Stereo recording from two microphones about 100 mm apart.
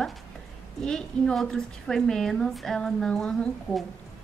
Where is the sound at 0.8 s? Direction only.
5° left (ahead or behind).